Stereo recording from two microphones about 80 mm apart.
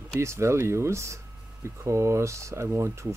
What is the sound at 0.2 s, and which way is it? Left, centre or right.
Speech, right.